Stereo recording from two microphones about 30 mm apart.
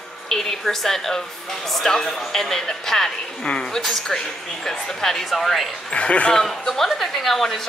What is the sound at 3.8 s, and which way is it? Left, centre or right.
A woman's voice, centre.